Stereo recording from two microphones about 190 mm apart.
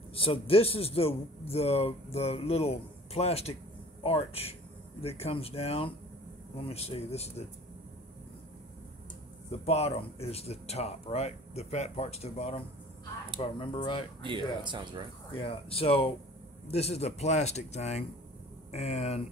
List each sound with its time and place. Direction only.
0.1 s a man's voice: 30° left (ahead or behind)
9.5 s a man's voice: 35° left (ahead or behind)
14.2 s speech: 25° right (ahead or behind)
15.3 s a man's voice: 30° left (ahead or behind)